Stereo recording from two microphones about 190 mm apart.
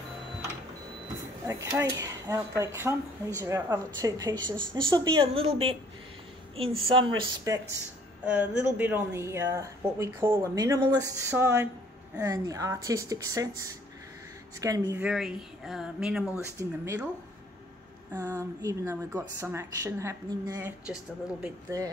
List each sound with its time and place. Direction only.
1.5 s a woman's voice: 15° right (ahead or behind)
8.3 s speech: 5° right (ahead or behind)
15.0 s speech: centre (ahead or behind)
18.1 s speech: 10° right (ahead or behind)
20.8 s speech: 5° right (ahead or behind)
21.6 s speech: 15° right (ahead or behind)